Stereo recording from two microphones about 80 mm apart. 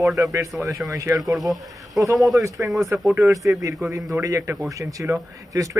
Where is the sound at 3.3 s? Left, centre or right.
Right.